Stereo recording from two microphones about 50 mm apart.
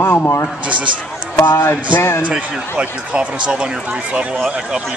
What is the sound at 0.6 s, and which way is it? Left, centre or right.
Speech, right.